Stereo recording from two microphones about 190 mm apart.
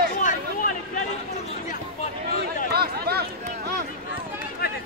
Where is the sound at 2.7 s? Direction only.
55° right (ahead or behind).